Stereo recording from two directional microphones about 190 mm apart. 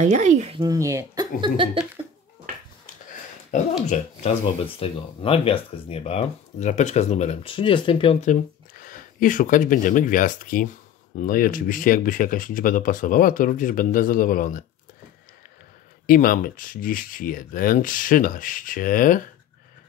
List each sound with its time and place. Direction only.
0.0 s speech: 40° right (ahead or behind)
0.7 s speech: 15° right (ahead or behind)
3.8 s speech: 35° left (ahead or behind)
16.1 s speech: 50° left (ahead or behind)